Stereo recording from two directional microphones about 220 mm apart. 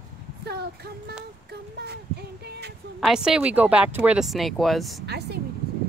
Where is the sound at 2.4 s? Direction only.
50° right (ahead or behind).